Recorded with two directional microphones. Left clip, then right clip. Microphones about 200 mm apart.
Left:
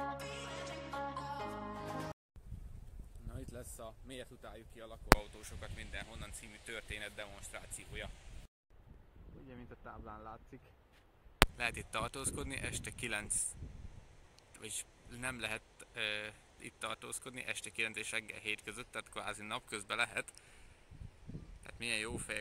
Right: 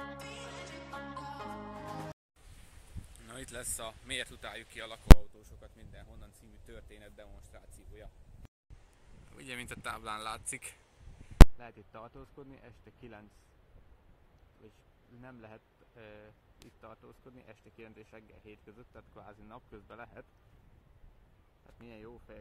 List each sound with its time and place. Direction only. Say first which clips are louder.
0.0 s music: left 2 dB; centre (ahead or behind)
3.3 s speech: right 7 dB; centre (ahead or behind)
9.5 s speech: right 12 dB; 20° right (ahead or behind)
11.5 s speech: left 12 dB; 20° left (ahead or behind)
15.1 s a man's voice: left 12 dB; 20° left (ahead or behind)
21.6 s speech: left 13 dB; 20° left (ahead or behind)